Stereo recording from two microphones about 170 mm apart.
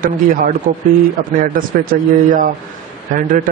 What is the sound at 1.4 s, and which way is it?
A man's voice, 55° right (ahead or behind).